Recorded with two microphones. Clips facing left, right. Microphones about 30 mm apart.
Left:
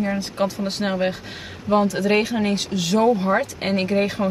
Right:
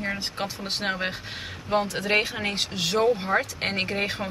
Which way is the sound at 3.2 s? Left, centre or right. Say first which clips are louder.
Left 4 dB; centre.